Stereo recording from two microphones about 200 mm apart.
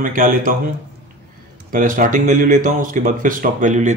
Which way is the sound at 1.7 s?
45° right (ahead or behind).